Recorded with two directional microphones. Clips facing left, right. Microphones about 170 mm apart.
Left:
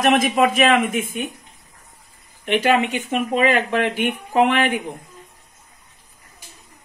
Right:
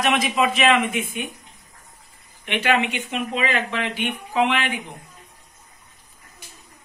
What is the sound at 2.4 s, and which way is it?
Speech, 40° left (ahead or behind).